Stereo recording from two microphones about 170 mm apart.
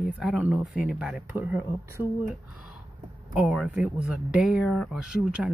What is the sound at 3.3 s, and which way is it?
Speech, 5° right (ahead or behind).